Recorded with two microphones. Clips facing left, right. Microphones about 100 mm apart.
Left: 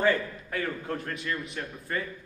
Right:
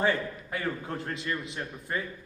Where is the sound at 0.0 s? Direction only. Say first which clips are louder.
Left 2 dB; 20° right (ahead or behind).